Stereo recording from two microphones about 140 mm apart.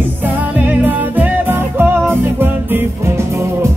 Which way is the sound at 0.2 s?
10° right (ahead or behind).